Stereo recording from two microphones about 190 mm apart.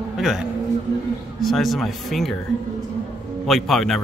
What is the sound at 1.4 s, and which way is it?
Speech, centre (ahead or behind).